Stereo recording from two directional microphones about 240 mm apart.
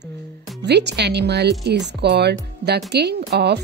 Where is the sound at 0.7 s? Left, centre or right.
Right.